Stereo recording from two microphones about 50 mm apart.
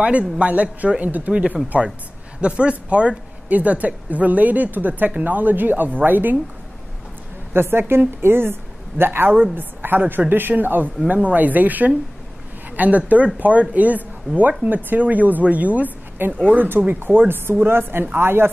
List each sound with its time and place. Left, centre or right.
0.0 s a man's voice: right
2.4 s speech: right
7.5 s a woman's voice: right